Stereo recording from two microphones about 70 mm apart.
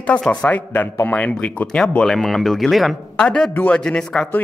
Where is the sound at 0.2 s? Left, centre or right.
Centre.